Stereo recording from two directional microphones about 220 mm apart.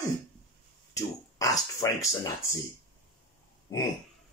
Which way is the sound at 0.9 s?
15° left (ahead or behind).